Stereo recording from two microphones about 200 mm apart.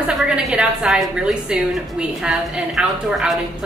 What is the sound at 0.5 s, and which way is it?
A woman's voice, 5° right (ahead or behind).